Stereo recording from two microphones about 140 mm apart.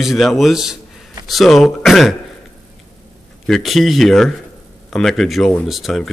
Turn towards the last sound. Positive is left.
turn(degrees=0)  # may be behind; listen again after turning